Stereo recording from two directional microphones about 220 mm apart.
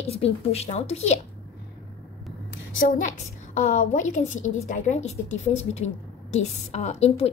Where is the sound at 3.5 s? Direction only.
35° left (ahead or behind).